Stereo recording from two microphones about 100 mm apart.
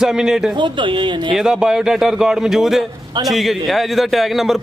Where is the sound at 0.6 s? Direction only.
55° right (ahead or behind).